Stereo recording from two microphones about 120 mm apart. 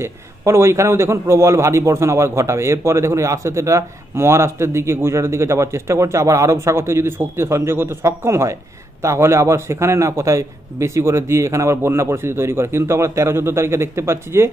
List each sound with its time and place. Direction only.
0.0 s a man's voice: 20° right (ahead or behind)